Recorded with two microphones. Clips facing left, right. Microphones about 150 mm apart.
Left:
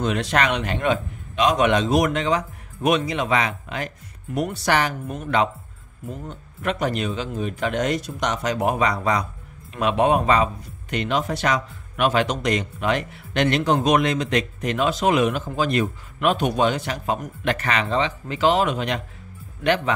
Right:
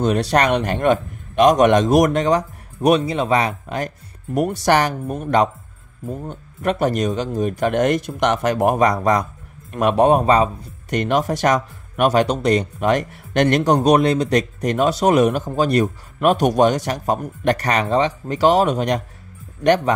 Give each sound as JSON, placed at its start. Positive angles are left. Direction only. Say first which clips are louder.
{"t": 0.0, "sound": "a man's voice", "louder": "right 5 dB", "side_deg": -35}